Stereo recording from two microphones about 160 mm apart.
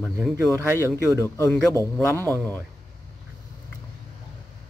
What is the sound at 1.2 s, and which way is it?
A man's voice, 20° left (ahead or behind).